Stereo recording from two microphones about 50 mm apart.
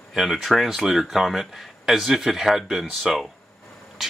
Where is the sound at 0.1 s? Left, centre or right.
Centre.